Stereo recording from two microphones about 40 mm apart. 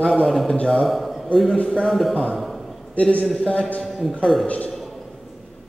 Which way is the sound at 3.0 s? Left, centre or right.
Left.